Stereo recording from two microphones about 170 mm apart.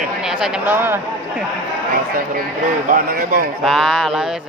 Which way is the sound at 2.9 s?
55° right (ahead or behind).